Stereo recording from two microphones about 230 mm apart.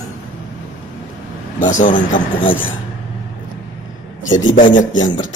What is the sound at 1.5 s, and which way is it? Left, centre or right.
Speech, left.